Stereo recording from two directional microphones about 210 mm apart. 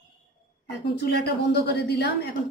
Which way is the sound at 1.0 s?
50° left (ahead or behind).